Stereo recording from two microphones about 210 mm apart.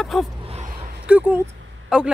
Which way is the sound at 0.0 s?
Centre (ahead or behind).